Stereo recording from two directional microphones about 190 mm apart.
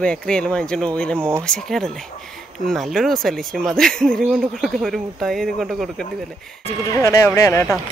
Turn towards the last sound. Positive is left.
turn(degrees=15)  # may be behind; listen again after turning